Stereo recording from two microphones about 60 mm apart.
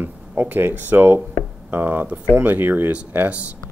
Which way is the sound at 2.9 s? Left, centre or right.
Right.